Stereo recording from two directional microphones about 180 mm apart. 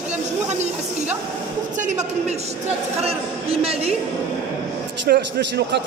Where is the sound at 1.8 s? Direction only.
40° right (ahead or behind).